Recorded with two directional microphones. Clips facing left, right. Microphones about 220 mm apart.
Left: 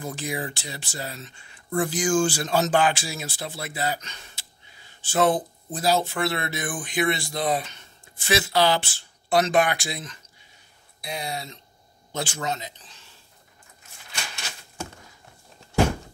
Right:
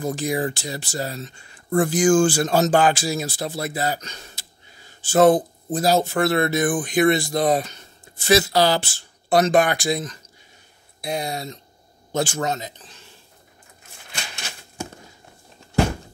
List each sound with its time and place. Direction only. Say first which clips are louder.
0.0 s speech: right 7 dB; 40° right (ahead or behind)